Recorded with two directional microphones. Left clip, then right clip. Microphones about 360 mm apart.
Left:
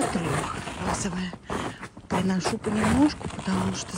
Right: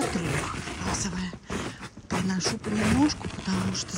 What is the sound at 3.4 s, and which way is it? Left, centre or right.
Speech, centre.